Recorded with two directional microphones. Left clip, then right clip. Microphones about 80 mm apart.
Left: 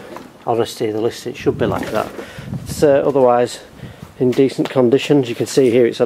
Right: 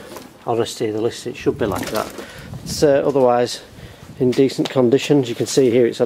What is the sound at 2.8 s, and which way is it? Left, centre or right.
Speech, right.